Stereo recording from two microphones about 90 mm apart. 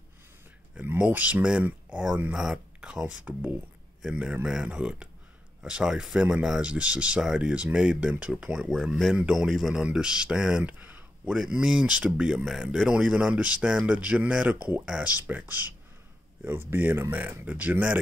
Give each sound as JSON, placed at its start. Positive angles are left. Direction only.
{"t": 0.7, "sound": "speech", "side_deg": -15}
{"t": 11.3, "sound": "speech", "side_deg": -5}